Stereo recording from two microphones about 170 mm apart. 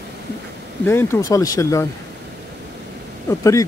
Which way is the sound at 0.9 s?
15° left (ahead or behind).